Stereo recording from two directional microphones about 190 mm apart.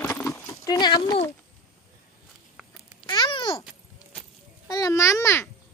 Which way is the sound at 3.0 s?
25° left (ahead or behind).